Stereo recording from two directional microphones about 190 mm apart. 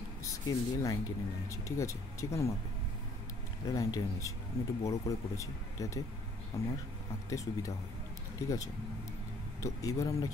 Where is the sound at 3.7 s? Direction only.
15° left (ahead or behind).